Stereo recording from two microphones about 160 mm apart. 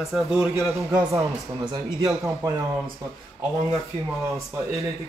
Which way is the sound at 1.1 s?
25° right (ahead or behind).